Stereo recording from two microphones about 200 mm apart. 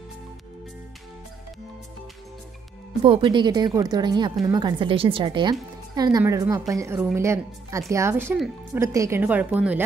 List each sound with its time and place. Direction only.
3.0 s a woman's voice: 25° right (ahead or behind); by 9.8 s 5° right (ahead or behind)